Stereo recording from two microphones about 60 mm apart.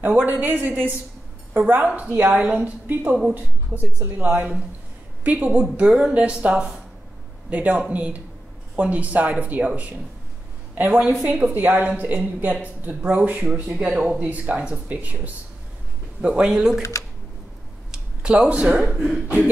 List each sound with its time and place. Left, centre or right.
0.0 s a man's voice: right
4.3 s a man's voice: right
16.4 s speech: centre
17.9 s a sound: centre
18.8 s speech: centre
19.2 s a man's voice: right